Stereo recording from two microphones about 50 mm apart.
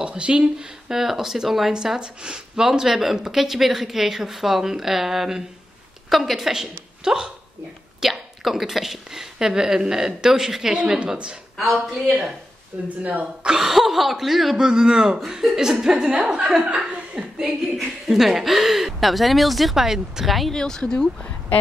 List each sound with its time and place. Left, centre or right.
0.0 s a woman's voice: right
11.5 s speech: centre
12.8 s speech: right
13.6 s speech: centre; by 17.5 s right
18.0 s speech: centre
20.5 s speech: centre